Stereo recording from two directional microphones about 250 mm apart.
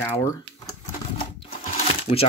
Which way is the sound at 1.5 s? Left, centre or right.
Left.